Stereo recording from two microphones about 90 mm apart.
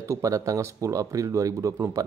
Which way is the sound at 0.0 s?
40° right (ahead or behind).